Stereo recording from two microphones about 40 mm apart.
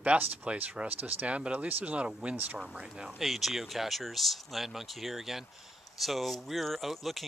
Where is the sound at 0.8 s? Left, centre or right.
Right.